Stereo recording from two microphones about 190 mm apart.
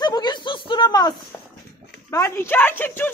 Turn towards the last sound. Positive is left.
turn(degrees=10)  # may be behind; listen again after turning